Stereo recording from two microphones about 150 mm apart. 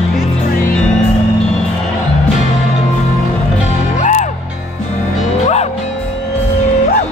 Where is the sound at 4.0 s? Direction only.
55° left (ahead or behind).